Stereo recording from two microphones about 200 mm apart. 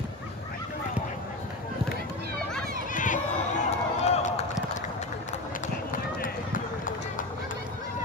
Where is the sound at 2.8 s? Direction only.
40° left (ahead or behind).